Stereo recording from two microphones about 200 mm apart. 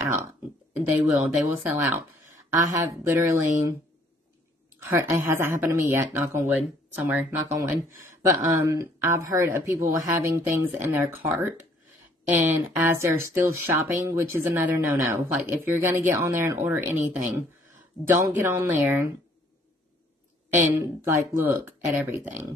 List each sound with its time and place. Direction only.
0.7 s speech: 10° right (ahead or behind)
4.8 s speech: 15° right (ahead or behind)
20.5 s speech: 15° right (ahead or behind)